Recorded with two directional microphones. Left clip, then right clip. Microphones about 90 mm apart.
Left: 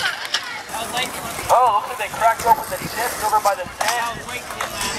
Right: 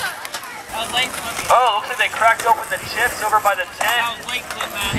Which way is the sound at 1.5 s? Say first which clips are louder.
Even; 25° right (ahead or behind).